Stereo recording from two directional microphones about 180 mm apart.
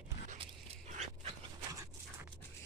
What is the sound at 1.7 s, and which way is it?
Dog, 20° right (ahead or behind).